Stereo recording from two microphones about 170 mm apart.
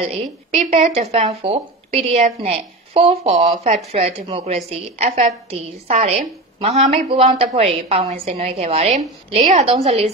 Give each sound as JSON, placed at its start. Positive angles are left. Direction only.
{"t": 0.0, "sound": "a woman's voice", "side_deg": -40}